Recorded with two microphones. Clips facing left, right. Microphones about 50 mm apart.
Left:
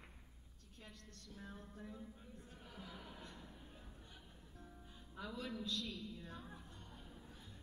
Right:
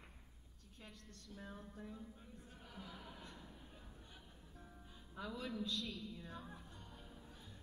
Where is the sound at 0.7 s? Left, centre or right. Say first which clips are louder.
Even; centre.